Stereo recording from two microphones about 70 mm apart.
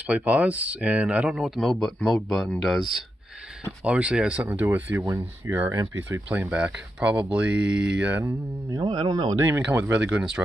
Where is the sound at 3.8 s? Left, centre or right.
Centre.